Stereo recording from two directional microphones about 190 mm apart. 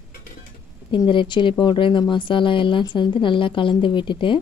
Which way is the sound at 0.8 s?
25° left (ahead or behind).